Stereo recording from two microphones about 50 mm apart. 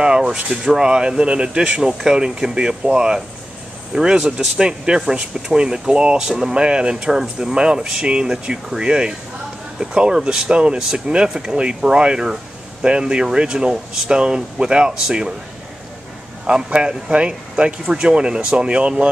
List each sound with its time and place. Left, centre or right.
0.0 s speech: centre
16.4 s speech: centre